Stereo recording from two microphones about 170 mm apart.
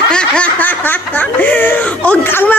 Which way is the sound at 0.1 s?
5° left (ahead or behind).